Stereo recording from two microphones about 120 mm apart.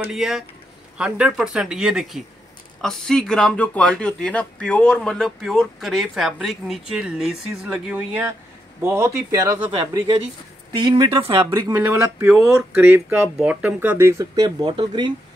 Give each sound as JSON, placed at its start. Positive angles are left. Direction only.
{"t": 0.0, "sound": "speech", "side_deg": -5}
{"t": 8.8, "sound": "speech", "side_deg": -25}
{"t": 10.8, "sound": "speech", "side_deg": -40}
{"t": 11.5, "sound": "speech", "side_deg": -20}
{"t": 14.7, "sound": "speech", "side_deg": -40}